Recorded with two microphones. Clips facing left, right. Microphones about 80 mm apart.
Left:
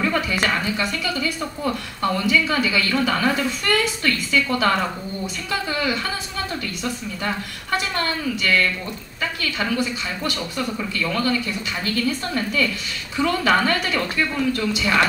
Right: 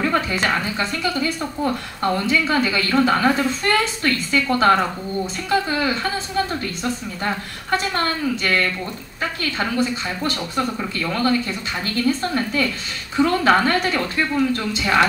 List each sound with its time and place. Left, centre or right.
0.0 s a woman's voice: right